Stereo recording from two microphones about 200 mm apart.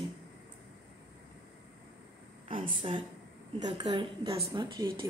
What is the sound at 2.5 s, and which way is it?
A woman's voice, 25° right (ahead or behind).